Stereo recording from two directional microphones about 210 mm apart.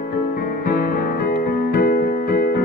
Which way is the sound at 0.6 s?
40° left (ahead or behind).